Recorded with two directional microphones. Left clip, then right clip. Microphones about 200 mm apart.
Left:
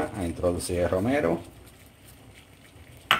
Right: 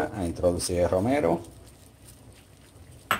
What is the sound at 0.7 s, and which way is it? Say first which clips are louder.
Speech: right 1 dB; centre (ahead or behind).